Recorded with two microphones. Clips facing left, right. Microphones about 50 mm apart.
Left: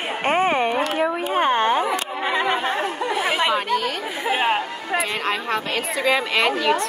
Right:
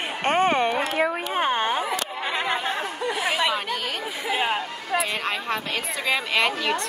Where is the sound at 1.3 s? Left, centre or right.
Centre.